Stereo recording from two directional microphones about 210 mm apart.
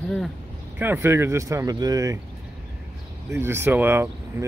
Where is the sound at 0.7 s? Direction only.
10° right (ahead or behind).